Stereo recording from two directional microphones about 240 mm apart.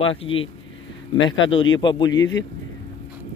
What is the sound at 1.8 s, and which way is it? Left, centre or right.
Speech, centre.